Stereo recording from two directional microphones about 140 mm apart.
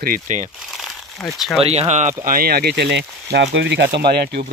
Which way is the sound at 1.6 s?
50° right (ahead or behind).